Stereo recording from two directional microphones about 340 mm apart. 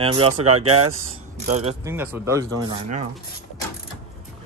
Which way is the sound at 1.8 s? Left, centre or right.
Centre.